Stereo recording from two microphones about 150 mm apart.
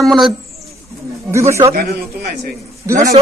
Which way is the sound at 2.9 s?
55° right (ahead or behind).